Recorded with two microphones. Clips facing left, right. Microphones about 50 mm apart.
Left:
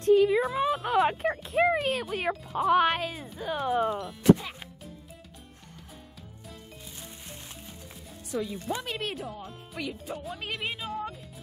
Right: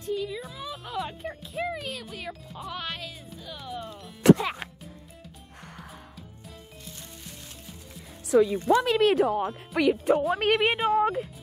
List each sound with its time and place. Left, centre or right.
0.0 s speech: left
1.7 s speech: left
4.2 s speech: right
8.3 s speech: right